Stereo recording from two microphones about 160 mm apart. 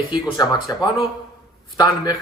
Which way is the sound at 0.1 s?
25° left (ahead or behind).